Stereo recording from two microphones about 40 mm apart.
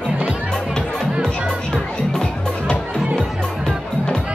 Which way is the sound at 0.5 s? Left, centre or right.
Centre.